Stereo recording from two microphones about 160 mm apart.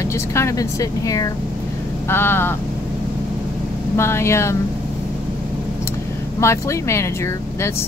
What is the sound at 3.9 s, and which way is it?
Speech, 15° left (ahead or behind).